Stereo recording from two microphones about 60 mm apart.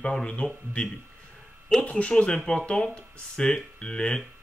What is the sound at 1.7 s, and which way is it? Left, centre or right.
Speech, centre.